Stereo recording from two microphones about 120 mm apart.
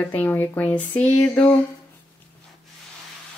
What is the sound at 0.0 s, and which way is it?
A woman's voice, 15° left (ahead or behind).